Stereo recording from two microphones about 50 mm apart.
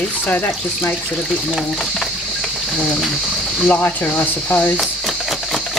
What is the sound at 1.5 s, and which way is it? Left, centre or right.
Speech, centre.